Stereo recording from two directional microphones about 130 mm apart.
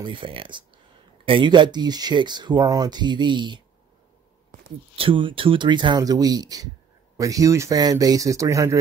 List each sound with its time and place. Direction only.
0.0 s speech: 40° right (ahead or behind)
4.9 s speech: 45° right (ahead or behind); by 8.7 s 25° right (ahead or behind)